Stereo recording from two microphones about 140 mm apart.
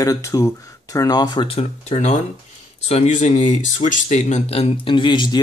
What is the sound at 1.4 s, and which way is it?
Speech, 50° left (ahead or behind).